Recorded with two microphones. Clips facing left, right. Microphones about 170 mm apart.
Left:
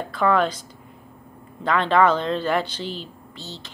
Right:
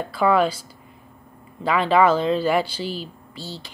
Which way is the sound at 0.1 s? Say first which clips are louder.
Right 1 dB; 10° right (ahead or behind).